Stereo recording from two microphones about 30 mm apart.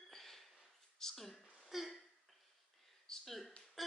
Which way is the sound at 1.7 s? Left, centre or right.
Centre.